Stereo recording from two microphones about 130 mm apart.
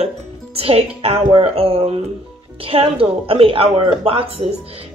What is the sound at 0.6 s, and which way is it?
Speech, 50° right (ahead or behind).